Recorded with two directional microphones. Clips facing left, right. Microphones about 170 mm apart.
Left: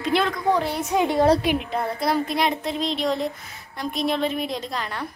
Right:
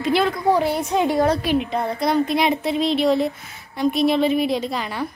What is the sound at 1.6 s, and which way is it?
Speech, centre (ahead or behind).